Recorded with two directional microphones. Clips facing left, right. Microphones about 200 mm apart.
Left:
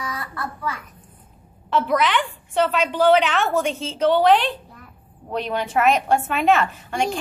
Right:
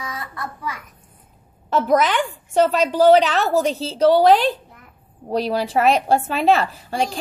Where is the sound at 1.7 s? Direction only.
40° right (ahead or behind).